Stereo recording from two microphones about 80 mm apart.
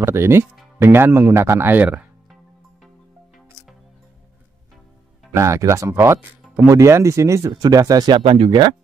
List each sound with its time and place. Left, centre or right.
0.0 s speech: right
5.3 s speech: right
8.1 s speech: right